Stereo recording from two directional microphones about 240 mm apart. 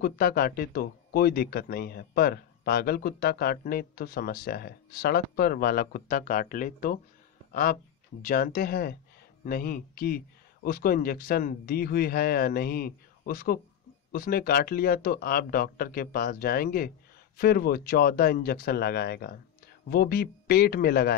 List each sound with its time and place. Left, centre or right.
0.0 s speech: left